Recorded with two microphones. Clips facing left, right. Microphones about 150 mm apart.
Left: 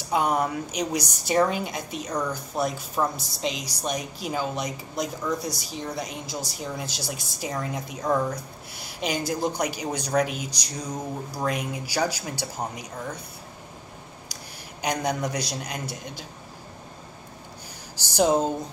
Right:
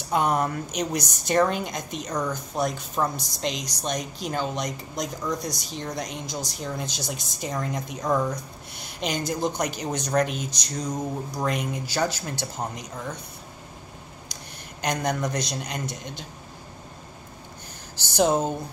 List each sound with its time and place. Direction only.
0.1 s a woman's voice: 5° left (ahead or behind)
14.3 s a man's voice: 10° left (ahead or behind)
17.9 s a sound: 10° left (ahead or behind)